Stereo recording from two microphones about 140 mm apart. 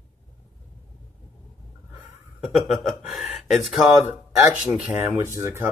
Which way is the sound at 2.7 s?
Centre (ahead or behind).